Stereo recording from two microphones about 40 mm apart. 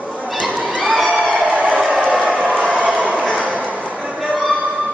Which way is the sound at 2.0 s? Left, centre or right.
Right.